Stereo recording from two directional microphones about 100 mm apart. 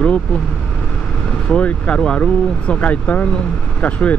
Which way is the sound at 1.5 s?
10° left (ahead or behind).